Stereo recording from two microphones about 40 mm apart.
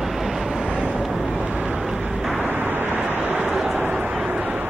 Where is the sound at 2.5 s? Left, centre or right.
Right.